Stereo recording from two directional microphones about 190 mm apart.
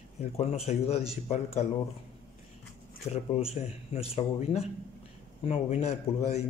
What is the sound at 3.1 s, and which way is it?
Speech, 35° left (ahead or behind).